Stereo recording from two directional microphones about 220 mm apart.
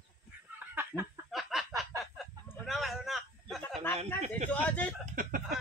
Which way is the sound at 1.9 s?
15° right (ahead or behind).